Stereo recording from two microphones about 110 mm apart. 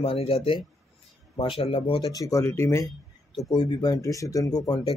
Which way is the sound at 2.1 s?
30° left (ahead or behind).